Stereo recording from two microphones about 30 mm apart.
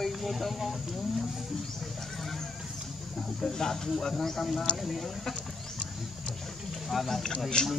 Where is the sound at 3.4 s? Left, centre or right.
Centre.